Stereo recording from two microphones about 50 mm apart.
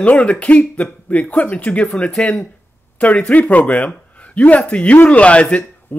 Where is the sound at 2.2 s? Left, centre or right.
Centre.